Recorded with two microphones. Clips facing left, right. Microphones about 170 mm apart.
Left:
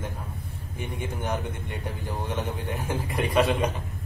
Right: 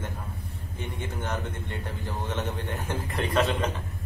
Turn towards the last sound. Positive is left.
turn(degrees=10)  # may be behind; listen again after turning